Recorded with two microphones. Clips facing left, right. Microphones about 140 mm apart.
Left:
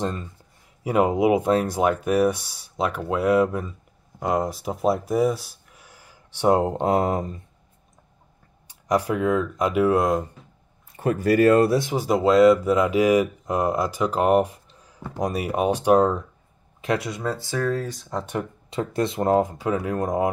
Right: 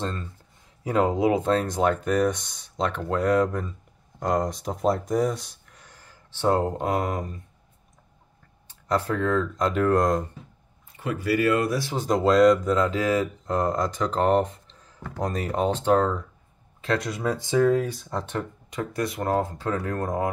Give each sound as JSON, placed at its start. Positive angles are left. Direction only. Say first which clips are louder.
{"t": 0.0, "sound": "speech", "louder": "left 3 dB", "side_deg": 15}
{"t": 8.6, "sound": "speech", "louder": "left 3 dB", "side_deg": 15}
{"t": 11.0, "sound": "speech", "louder": "left 6 dB", "side_deg": 45}
{"t": 11.7, "sound": "speech", "louder": "left 5 dB", "side_deg": 20}
{"t": 12.0, "sound": "speech", "louder": "left 1 dB", "side_deg": 5}
{"t": 17.1, "sound": "speech", "louder": "right 1 dB", "side_deg": -5}
{"t": 17.4, "sound": "speech", "louder": "right 8 dB", "side_deg": -20}
{"t": 17.9, "sound": "speech", "louder": "left 1 dB", "side_deg": 0}
{"t": 18.7, "sound": "speech", "louder": "left 5 dB", "side_deg": 25}